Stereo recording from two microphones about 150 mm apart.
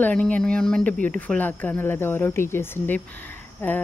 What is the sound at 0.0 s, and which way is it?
Speech, 10° left (ahead or behind).